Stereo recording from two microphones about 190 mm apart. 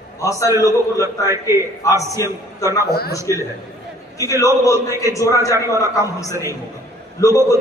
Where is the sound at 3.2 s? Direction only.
15° right (ahead or behind).